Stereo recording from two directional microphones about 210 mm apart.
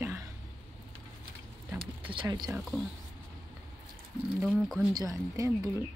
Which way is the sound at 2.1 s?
20° right (ahead or behind).